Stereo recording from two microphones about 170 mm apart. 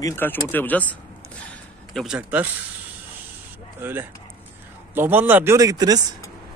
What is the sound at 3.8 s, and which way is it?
Speech, 10° right (ahead or behind).